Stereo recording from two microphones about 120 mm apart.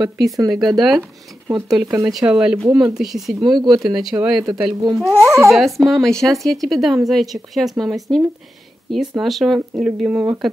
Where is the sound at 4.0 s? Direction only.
5° right (ahead or behind).